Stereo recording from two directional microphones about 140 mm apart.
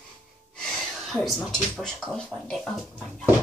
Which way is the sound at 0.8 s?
Centre (ahead or behind).